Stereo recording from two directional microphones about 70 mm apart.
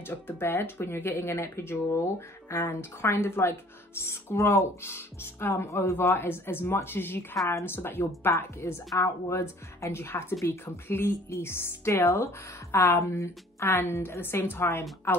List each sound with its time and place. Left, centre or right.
0.0 s speech: left
13.7 s speech: left